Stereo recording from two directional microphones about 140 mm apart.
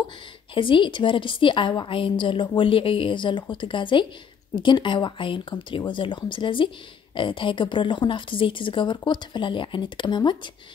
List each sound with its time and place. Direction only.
0.6 s a woman's voice: 35° left (ahead or behind)